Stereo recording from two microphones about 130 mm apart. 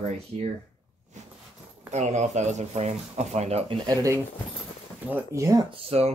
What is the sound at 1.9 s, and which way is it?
Speech, 65° right (ahead or behind).